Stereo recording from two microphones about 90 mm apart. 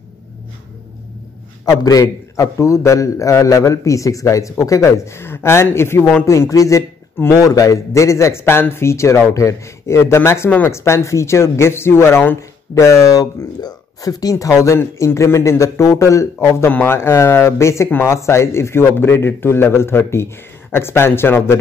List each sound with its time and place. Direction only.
1.7 s a man's voice: 45° left (ahead or behind); by 12.4 s 25° left (ahead or behind)
12.4 s a man's voice: 35° left (ahead or behind)